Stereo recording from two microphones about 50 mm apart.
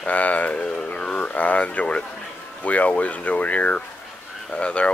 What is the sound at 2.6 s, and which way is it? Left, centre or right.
Speech, left.